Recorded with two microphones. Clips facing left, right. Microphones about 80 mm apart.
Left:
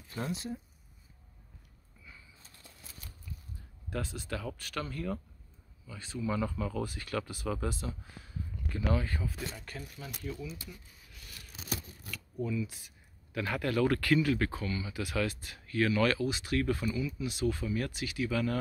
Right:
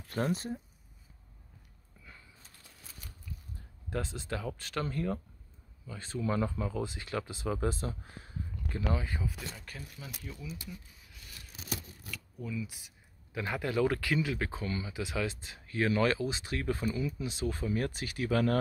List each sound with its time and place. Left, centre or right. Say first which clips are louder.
0.0 s speech: right 5 dB; right
3.9 s speech: right 1 dB; right
6.4 s speech: even; right
8.9 s speech: left 2 dB; centre
12.1 s zipper: left 5 dB; centre
12.6 s speech: left 1 dB; centre
14.6 s speech: even; right